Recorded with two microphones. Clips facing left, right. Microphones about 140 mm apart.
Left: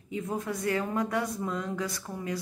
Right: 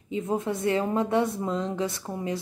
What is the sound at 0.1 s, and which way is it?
A woman's voice, 25° right (ahead or behind).